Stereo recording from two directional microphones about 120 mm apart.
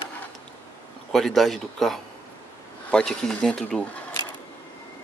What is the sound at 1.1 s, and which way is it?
Speech, centre (ahead or behind).